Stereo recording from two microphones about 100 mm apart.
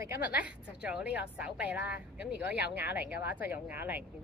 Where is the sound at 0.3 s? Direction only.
15° right (ahead or behind).